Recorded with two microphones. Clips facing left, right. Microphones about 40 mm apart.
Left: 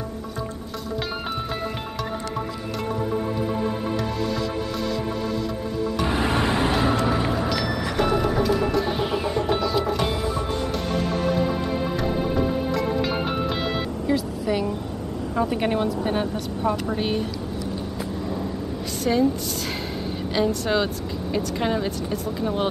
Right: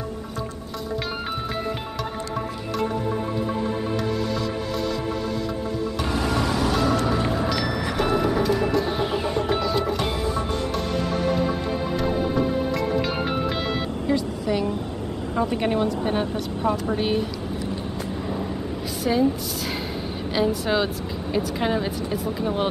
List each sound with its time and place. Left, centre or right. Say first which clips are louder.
6.0 s vehicle: left 1 dB; left
7.1 s music: even; centre
14.0 s vehicle: even; centre
15.3 s speech: even; centre
19.1 s speech: left 1 dB; centre
20.3 s speech: even; centre